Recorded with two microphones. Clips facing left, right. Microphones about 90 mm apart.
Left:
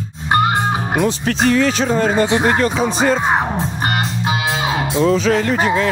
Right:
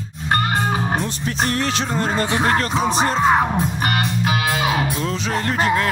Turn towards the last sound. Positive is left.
turn(degrees=25)  # may be behind; listen again after turning